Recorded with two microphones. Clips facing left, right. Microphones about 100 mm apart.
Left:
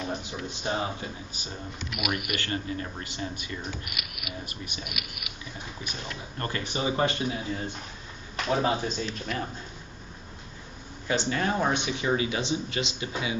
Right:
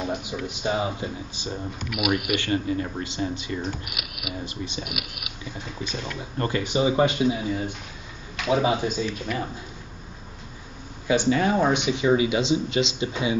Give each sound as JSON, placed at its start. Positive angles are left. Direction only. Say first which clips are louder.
{"t": 0.1, "sound": "a sound", "louder": "right 4 dB", "side_deg": -15}
{"t": 0.5, "sound": "speech", "louder": "right 4 dB", "side_deg": -15}
{"t": 2.0, "sound": "speech", "louder": "right 7 dB", "side_deg": 0}
{"t": 2.4, "sound": "speech", "louder": "right 7 dB", "side_deg": -20}
{"t": 4.0, "sound": "speech", "louder": "right 4 dB", "side_deg": 0}
{"t": 4.5, "sound": "speech", "louder": "right 7 dB", "side_deg": -20}
{"t": 4.8, "sound": "speech", "louder": "right 5 dB", "side_deg": 0}
{"t": 6.3, "sound": "speech", "louder": "right 8 dB", "side_deg": -20}
{"t": 11.1, "sound": "speech", "louder": "right 6 dB", "side_deg": -15}